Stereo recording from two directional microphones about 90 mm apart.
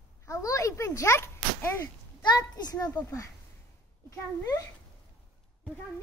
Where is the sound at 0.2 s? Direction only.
35° left (ahead or behind).